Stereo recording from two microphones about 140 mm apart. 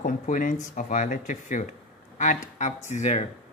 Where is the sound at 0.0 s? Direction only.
70° left (ahead or behind).